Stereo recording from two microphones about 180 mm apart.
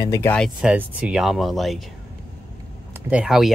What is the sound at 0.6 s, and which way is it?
Speech, 5° right (ahead or behind).